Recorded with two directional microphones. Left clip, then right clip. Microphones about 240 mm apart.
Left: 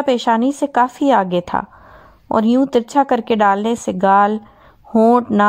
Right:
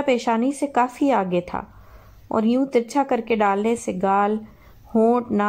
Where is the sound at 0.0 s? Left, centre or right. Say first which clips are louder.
Left 5 dB; left.